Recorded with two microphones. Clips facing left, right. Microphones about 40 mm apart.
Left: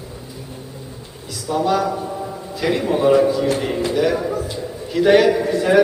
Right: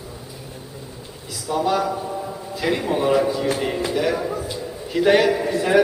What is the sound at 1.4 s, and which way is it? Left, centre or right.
A man's voice, centre.